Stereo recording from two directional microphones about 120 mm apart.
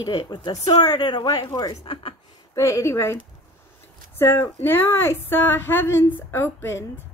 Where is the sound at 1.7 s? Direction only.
50° left (ahead or behind).